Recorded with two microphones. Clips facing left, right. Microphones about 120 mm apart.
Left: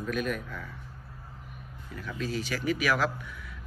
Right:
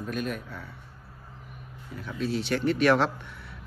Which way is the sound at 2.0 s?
Centre (ahead or behind).